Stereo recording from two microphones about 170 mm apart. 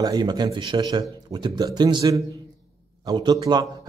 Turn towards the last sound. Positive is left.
turn(degrees=-25)  # may be behind; listen again after turning